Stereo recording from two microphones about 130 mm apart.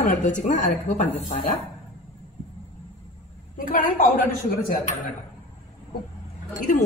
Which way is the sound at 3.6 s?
90° left.